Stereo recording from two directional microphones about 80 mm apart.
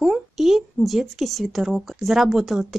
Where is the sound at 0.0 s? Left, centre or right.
Centre.